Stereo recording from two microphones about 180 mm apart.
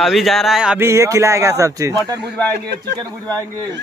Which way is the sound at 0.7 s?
15° right (ahead or behind).